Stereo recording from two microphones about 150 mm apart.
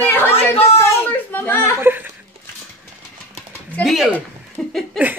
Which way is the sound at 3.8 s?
5° right (ahead or behind).